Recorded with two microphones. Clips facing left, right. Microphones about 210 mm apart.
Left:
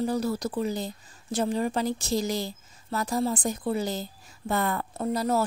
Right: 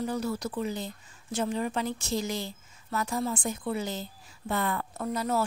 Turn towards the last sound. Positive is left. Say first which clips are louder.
# left 4 dB
turn(degrees=35)  # may be behind; listen again after turning